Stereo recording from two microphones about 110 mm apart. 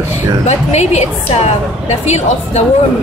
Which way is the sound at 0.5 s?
90° left.